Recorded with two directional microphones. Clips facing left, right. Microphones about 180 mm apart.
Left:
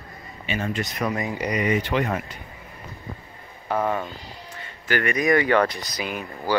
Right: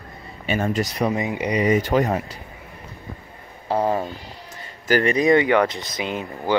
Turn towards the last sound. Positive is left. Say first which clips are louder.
# right 3 dB
turn(degrees=-20)  # may be behind; listen again after turning